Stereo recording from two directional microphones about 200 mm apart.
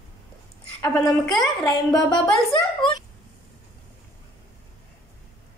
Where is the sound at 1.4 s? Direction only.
Centre (ahead or behind).